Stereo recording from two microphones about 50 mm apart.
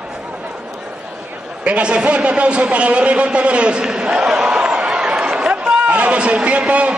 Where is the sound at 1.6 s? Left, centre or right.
Right.